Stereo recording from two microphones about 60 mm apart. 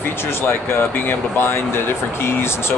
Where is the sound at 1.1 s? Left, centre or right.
Left.